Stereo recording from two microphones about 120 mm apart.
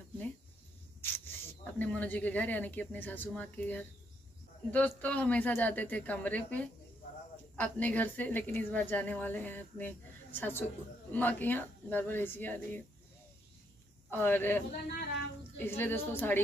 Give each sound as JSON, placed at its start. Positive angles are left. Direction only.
{"t": 1.0, "sound": "a woman's voice", "side_deg": 20}
{"t": 14.1, "sound": "a woman's voice", "side_deg": 15}